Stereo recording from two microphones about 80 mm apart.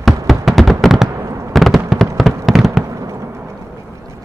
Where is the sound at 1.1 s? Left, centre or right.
Right.